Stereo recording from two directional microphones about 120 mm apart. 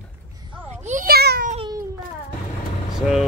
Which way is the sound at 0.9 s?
85° right.